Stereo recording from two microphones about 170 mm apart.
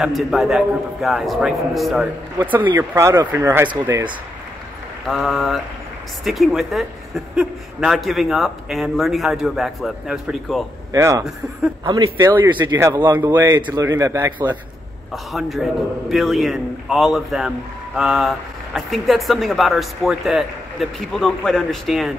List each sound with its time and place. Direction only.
0.0 s speech: centre (ahead or behind)
2.3 s speech: 10° right (ahead or behind)
5.0 s speech: centre (ahead or behind)
10.9 s speech: 20° right (ahead or behind)
13.2 s speech: 10° right (ahead or behind)
15.3 s speech: centre (ahead or behind)